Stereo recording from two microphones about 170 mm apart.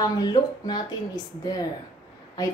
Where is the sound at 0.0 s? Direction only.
25° left (ahead or behind).